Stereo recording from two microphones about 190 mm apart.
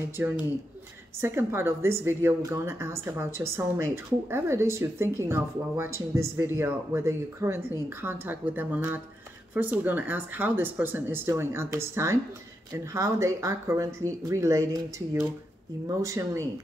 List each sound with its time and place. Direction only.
0.2 s a woman's voice: 10° right (ahead or behind)